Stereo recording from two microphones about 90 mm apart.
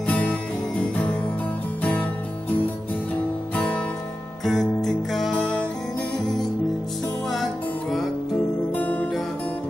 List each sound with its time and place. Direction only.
0.0 s music: 15° left (ahead or behind)
1.8 s music: 15° left (ahead or behind)
3.5 s music: 15° left (ahead or behind)
4.5 s music: centre (ahead or behind)
8.7 s music: 15° left (ahead or behind)